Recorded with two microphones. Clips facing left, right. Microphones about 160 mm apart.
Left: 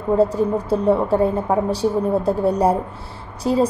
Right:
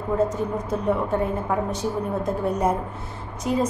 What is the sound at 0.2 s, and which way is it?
A woman's voice, 30° left (ahead or behind).